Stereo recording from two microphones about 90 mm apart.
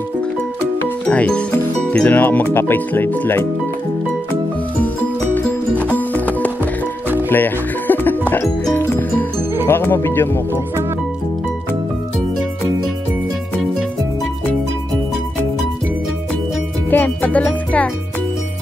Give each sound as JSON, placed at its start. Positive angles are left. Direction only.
{"t": 1.0, "sound": "speech", "side_deg": 15}
{"t": 5.3, "sound": "music", "side_deg": 20}
{"t": 9.7, "sound": "speech", "side_deg": 25}
{"t": 16.9, "sound": "speech", "side_deg": 20}